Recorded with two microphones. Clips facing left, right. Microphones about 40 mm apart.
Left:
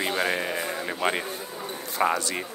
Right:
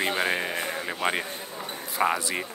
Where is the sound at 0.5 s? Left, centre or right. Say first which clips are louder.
Even; right.